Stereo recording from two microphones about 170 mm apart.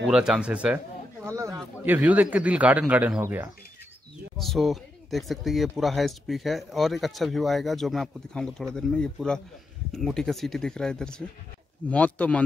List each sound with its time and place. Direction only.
0.0 s speech: 5° right (ahead or behind)
1.2 s a sound: 15° right (ahead or behind)
1.9 s speech: 10° right (ahead or behind)
4.4 s speech: centre (ahead or behind)